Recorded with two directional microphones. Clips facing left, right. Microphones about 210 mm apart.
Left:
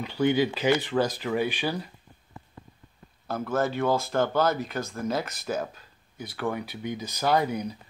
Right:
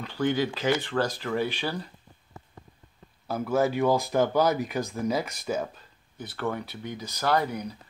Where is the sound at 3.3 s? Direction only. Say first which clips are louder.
Right 2 dB; 10° right (ahead or behind).